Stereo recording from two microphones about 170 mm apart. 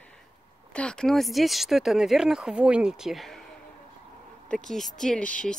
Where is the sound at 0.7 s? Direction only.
5° left (ahead or behind).